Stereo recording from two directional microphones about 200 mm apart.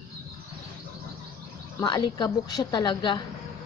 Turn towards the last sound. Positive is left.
turn(degrees=25)  # may be behind; listen again after turning